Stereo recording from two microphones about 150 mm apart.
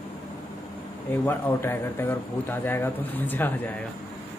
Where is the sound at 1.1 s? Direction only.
15° left (ahead or behind).